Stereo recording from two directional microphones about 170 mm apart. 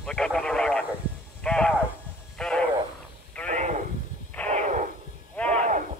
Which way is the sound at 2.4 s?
5° left (ahead or behind).